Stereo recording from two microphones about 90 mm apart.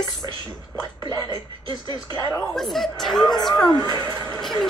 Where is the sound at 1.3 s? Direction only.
55° right (ahead or behind).